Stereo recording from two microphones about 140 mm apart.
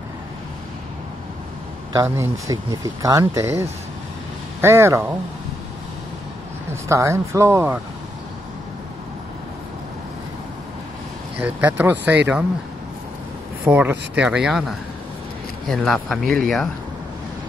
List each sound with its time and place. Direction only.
2.0 s speech: 20° right (ahead or behind)
6.7 s speech: 20° right (ahead or behind)
11.3 s speech: 10° right (ahead or behind)
13.7 s speech: 10° right (ahead or behind)
15.7 s speech: 5° left (ahead or behind)